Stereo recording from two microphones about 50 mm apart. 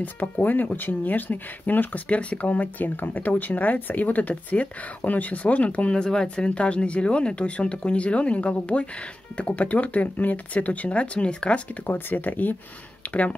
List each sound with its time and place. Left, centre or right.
0.0 s speech: left
11.8 s speech: left
13.0 s a sound: left